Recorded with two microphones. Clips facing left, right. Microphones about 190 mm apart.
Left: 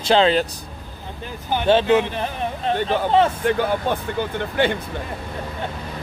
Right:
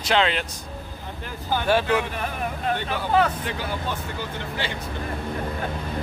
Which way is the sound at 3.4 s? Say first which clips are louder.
Left 9 dB; 55° left (ahead or behind).